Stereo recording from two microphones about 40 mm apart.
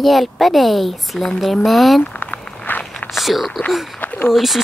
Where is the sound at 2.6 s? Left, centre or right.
Left.